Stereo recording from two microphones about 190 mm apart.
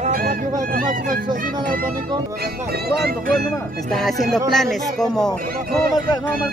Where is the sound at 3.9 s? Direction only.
Centre (ahead or behind).